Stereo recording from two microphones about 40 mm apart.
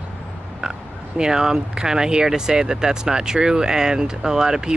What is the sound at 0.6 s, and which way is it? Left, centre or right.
Speech, centre.